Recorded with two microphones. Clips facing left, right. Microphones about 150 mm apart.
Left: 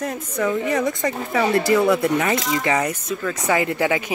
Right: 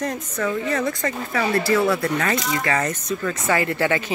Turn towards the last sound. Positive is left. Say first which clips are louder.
# left 1 dB
turn(degrees=15)  # may be behind; listen again after turning